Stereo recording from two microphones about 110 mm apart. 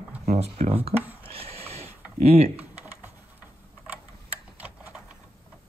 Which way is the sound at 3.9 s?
10° right (ahead or behind).